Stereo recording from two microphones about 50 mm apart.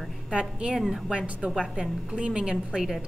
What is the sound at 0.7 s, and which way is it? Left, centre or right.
Speech, centre.